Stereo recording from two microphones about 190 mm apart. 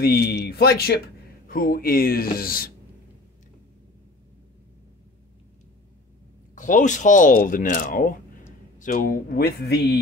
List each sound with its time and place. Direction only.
0.0 s speech: 55° left (ahead or behind)
6.5 s speech: 40° left (ahead or behind)